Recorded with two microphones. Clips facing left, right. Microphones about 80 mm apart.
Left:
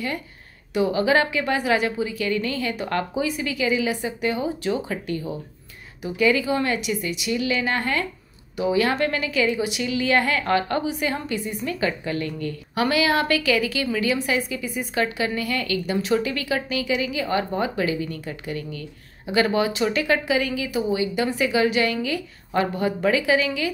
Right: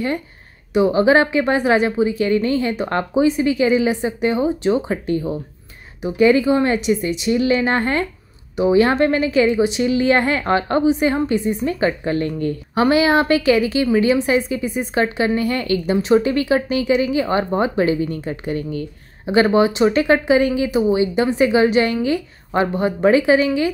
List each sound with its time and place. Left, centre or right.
0.7 s a woman's voice: right